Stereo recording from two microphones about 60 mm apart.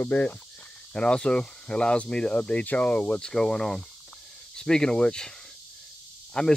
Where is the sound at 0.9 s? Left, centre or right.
Centre.